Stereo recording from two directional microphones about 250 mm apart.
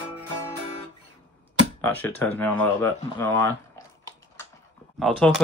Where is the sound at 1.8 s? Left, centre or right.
Centre.